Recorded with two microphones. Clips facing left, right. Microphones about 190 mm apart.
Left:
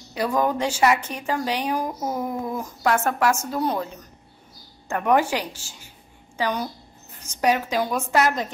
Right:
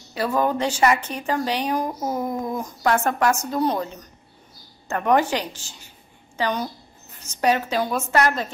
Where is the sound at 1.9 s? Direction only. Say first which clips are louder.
Right 1 dB; 5° right (ahead or behind).